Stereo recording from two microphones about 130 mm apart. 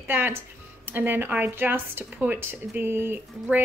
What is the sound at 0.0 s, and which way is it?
Speech, 15° right (ahead or behind).